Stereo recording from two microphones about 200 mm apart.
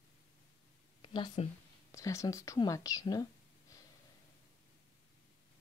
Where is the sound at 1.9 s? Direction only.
15° left (ahead or behind).